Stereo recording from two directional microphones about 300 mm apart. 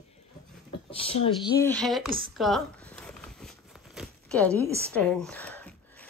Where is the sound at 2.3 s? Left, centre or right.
Centre.